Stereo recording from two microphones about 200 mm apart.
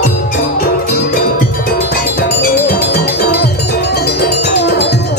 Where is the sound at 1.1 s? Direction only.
50° left (ahead or behind).